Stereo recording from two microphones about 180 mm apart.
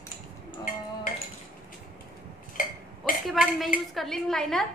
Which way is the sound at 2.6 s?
50° left (ahead or behind).